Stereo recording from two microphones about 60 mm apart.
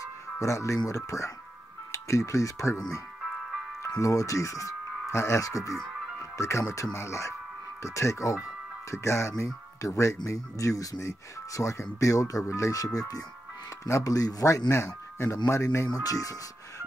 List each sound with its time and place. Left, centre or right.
0.4 s speech: left
6.3 s speech: left
15.9 s speech: left